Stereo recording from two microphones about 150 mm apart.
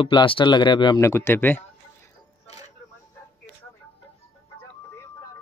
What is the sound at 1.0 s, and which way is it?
Speech, 15° left (ahead or behind).